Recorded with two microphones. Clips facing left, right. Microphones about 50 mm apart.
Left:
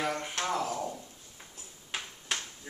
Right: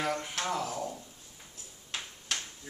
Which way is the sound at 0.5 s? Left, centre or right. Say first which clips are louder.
Left 1 dB; centre.